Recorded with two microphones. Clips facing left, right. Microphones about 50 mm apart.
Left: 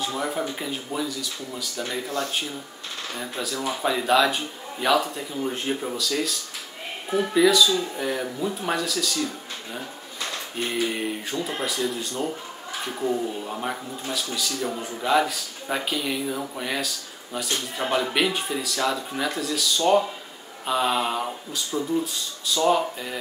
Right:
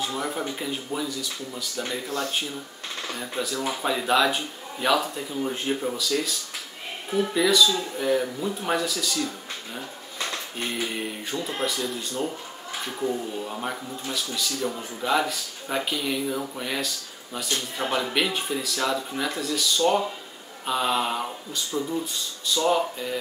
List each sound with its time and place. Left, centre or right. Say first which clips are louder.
0.0 s speech: left 2 dB; centre
10.9 s speech: left 2 dB; centre
13.4 s speech: left 1 dB; centre